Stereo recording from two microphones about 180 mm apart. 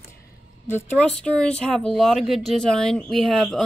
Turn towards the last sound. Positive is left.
turn(degrees=0)  # may be behind; listen again after turning